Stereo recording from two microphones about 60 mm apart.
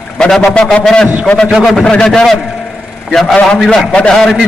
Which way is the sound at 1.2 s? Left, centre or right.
Centre.